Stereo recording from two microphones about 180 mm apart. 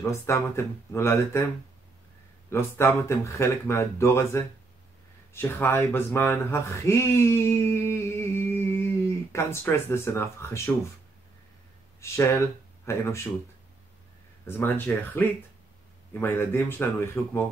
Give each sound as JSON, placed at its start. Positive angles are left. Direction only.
{"t": 0.3, "sound": "speech", "side_deg": 15}
{"t": 2.5, "sound": "speech", "side_deg": 15}
{"t": 12.0, "sound": "speech", "side_deg": 15}
{"t": 14.4, "sound": "speech", "side_deg": 10}